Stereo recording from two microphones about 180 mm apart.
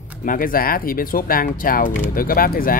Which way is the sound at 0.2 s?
50° left (ahead or behind).